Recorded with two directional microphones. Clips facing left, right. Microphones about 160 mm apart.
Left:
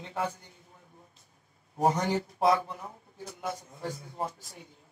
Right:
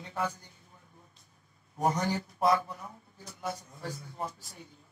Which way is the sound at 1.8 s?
25° left (ahead or behind).